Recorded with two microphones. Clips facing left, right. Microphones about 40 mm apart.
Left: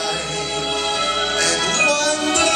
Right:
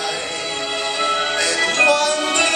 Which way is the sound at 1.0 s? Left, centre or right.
Centre.